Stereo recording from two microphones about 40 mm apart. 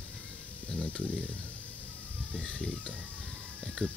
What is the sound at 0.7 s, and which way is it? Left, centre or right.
Speech, left.